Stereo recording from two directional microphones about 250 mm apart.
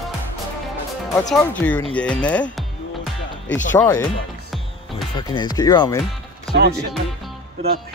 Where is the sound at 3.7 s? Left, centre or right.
Centre.